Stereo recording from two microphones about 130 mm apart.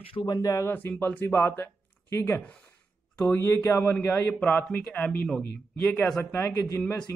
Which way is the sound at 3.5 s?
20° left (ahead or behind).